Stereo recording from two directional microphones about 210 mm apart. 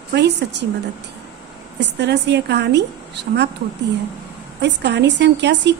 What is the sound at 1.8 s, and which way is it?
A woman's voice, 55° right (ahead or behind).